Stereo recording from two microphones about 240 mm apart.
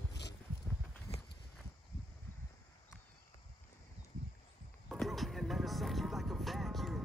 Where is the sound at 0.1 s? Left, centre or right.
Left.